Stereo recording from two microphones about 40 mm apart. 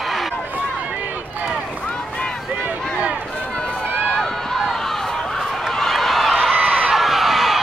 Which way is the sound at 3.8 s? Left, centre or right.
Right.